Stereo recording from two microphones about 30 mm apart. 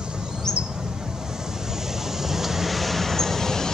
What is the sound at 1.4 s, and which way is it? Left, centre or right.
Vehicle, centre.